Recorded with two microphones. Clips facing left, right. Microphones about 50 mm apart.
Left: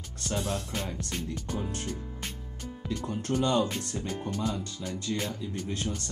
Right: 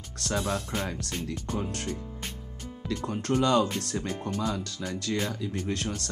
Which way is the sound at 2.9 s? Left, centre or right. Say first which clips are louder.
Right 3 dB; right.